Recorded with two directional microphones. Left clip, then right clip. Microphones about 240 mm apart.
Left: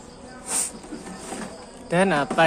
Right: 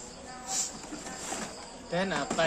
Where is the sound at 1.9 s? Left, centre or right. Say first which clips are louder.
Left 10 dB; left.